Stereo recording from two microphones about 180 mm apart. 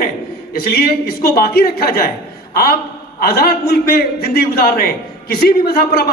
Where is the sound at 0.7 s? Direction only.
60° left (ahead or behind).